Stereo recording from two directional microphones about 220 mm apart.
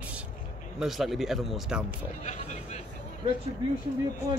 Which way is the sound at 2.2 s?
30° left (ahead or behind).